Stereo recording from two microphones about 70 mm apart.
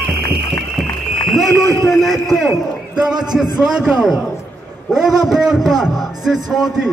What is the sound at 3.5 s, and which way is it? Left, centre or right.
A man's voice, centre.